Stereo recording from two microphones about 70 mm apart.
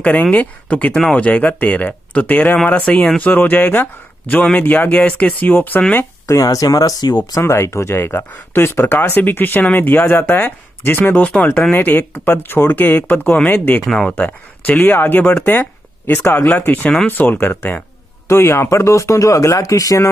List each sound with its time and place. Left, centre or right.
0.0 s speech: centre
6.2 s speech: left
7.4 s speech: left
13.8 s speech: centre
14.1 s speech: left